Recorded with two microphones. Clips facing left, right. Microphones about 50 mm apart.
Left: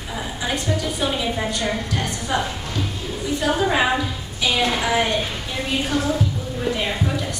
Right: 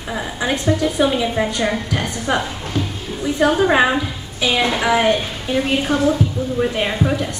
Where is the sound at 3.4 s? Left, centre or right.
Right.